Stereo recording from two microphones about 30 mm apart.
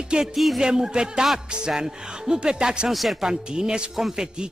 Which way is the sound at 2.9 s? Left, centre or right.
Centre.